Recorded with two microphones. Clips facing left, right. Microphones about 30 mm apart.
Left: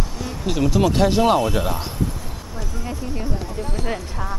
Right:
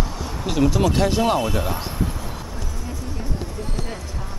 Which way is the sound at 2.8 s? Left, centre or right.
Left.